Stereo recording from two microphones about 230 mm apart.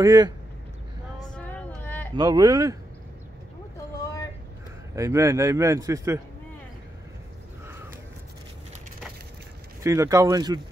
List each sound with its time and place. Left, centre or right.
0.0 s a man's voice: centre
1.3 s a sound: centre
2.1 s a man's voice: centre
4.0 s vehicle: centre
4.9 s a man's voice: centre
9.8 s a man's voice: centre